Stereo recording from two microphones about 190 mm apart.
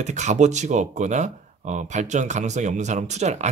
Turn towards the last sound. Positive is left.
turn(degrees=-35)  # may be behind; listen again after turning